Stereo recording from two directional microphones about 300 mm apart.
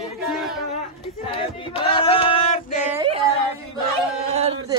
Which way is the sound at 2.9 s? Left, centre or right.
Centre.